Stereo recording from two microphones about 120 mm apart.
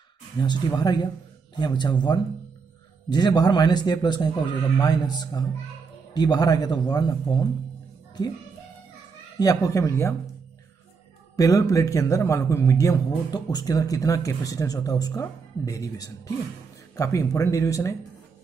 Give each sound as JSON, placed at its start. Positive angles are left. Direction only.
{"t": 0.4, "sound": "a man's voice", "side_deg": 35}
{"t": 9.4, "sound": "a man's voice", "side_deg": 30}
{"t": 11.3, "sound": "a man's voice", "side_deg": 30}